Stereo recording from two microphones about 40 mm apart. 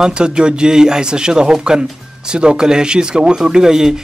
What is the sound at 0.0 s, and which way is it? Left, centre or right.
Speech, right.